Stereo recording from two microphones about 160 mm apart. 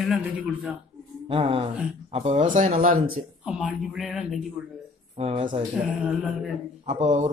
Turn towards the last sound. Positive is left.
turn(degrees=-45)  # may be behind; listen again after turning